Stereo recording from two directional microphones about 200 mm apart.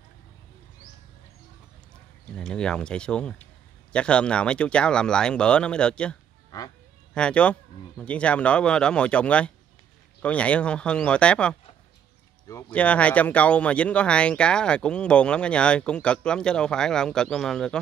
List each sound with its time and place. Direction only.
2.3 s speech: 5° left (ahead or behind)
6.5 s speech: 15° left (ahead or behind)
7.2 s speech: 5° left (ahead or behind)